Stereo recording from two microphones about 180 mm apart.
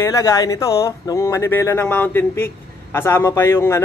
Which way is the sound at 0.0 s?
20° left (ahead or behind).